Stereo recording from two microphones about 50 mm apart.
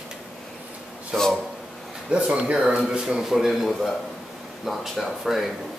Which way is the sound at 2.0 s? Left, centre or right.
Right.